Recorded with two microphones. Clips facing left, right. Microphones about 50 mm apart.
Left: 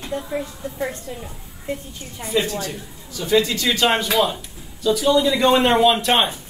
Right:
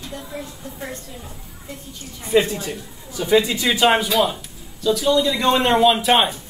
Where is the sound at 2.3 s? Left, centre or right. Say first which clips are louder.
Right 4 dB; right.